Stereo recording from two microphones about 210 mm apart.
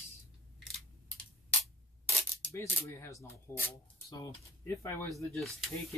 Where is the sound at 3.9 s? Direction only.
15° left (ahead or behind).